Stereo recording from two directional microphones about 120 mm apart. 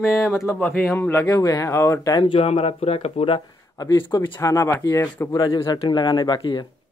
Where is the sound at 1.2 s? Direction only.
30° left (ahead or behind).